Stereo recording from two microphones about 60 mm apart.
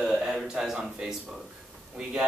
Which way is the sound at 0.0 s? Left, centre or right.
Centre.